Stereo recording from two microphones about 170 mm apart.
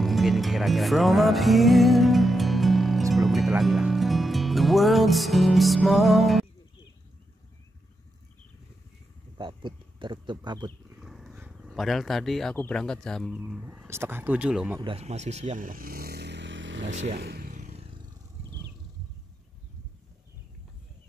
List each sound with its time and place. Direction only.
0.0 s music: centre (ahead or behind)
9.4 s speech: 30° right (ahead or behind)
11.0 s speech: centre (ahead or behind)
14.8 s speech: 35° right (ahead or behind); by 16.9 s 90° right
17.1 s vehicle: 75° right (ahead or behind); by 18.0 s 35° right (ahead or behind)